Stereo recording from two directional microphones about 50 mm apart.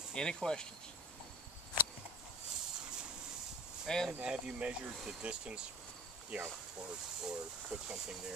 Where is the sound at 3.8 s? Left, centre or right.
Centre.